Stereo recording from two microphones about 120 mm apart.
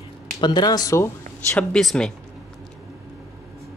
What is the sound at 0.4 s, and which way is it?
Speech, 35° left (ahead or behind).